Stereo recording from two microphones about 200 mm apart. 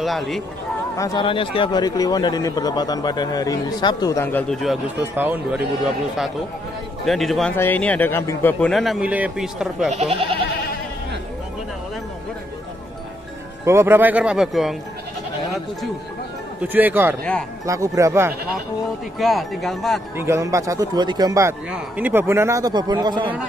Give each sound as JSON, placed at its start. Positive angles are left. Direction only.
{"t": 0.0, "sound": "a man's voice", "side_deg": 0}
{"t": 0.9, "sound": "speech", "side_deg": 20}
{"t": 4.9, "sound": "a man's voice", "side_deg": -10}
{"t": 7.1, "sound": "a man's voice", "side_deg": 0}
{"t": 13.7, "sound": "a man's voice", "side_deg": -10}
{"t": 16.6, "sound": "a man's voice", "side_deg": -10}
{"t": 17.2, "sound": "a man's voice", "side_deg": 5}
{"t": 17.6, "sound": "a man's voice", "side_deg": -15}
{"t": 19.1, "sound": "a man's voice", "side_deg": 0}
{"t": 20.2, "sound": "a man's voice", "side_deg": -15}